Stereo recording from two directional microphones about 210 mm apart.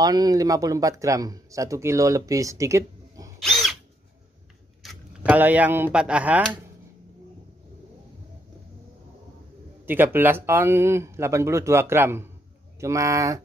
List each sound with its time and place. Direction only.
0.0 s speech: 20° right (ahead or behind)
3.3 s drill: centre (ahead or behind)
4.8 s speech: 5° right (ahead or behind)
9.8 s speech: 10° right (ahead or behind)